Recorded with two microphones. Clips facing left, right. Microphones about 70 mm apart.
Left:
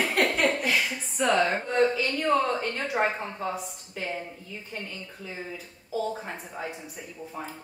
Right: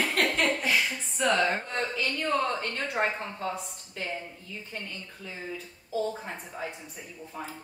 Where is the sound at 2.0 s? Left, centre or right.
Centre.